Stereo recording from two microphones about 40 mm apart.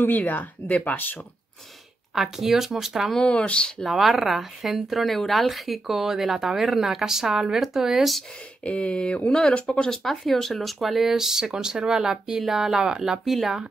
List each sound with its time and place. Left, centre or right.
0.2 s speech: left
2.1 s speech: centre
3.2 s speech: left
3.8 s speech: centre
8.6 s speech: left
9.8 s speech: centre
13.2 s speech: centre